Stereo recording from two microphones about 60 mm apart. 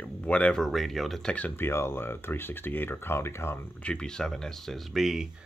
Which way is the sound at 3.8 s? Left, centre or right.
Centre.